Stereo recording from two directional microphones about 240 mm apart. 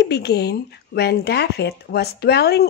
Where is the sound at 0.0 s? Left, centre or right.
Left.